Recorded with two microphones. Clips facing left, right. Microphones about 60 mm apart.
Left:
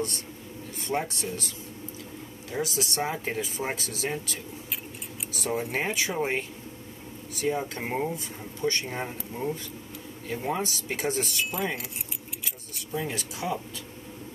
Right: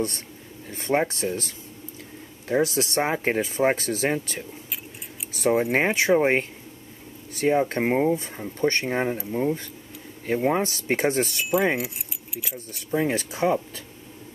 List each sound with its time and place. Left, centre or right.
0.7 s speech: right
2.5 s speech: right
5.3 s keys jangling: right
5.6 s speech: right
8.5 s speech: right
9.3 s speech: right
10.2 s speech: right
12.7 s speech: right